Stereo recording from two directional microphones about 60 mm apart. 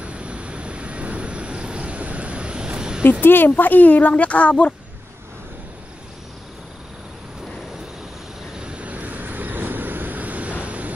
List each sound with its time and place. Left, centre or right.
0.0 s vehicle: centre
3.0 s speech: left
8.5 s vehicle: centre